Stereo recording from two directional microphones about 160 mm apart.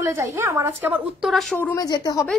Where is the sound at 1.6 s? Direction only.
15° left (ahead or behind).